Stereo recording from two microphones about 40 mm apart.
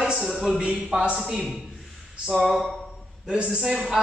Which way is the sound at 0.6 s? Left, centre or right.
Centre.